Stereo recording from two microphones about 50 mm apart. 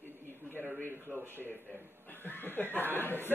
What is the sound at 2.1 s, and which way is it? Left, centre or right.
Speech, left.